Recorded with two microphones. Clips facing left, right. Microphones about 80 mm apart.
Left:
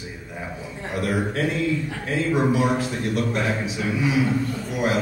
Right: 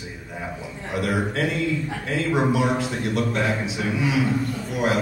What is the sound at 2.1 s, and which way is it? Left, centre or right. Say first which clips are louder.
Speech: left 1 dB; right.